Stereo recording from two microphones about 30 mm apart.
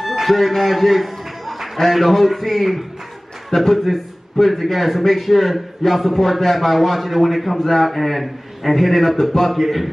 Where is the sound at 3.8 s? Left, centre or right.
Centre.